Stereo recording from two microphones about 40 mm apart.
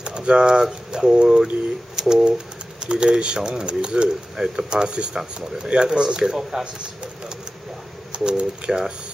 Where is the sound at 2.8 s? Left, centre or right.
Right.